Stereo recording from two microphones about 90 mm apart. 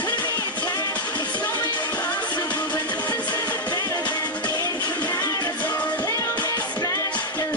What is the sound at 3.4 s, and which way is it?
Music, 20° left (ahead or behind).